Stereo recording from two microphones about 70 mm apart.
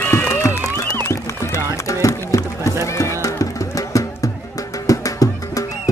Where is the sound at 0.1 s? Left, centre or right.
Left.